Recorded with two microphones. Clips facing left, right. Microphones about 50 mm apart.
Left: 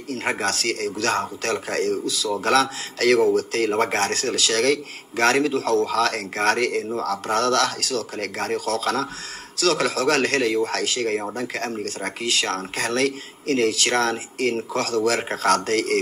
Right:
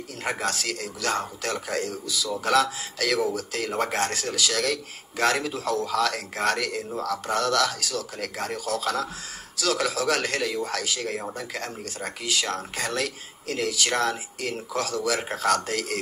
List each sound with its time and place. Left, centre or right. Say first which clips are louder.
0.4 s speech: left 5 dB; left